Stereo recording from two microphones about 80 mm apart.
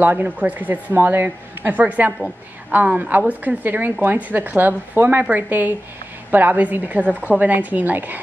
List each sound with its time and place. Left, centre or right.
0.0 s speech: right